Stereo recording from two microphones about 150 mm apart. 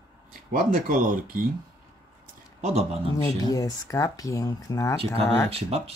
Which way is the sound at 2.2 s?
50° right (ahead or behind).